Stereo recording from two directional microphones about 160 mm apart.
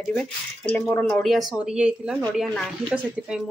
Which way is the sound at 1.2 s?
Centre (ahead or behind).